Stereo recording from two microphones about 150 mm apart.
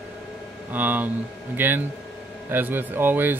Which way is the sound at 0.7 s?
10° right (ahead or behind).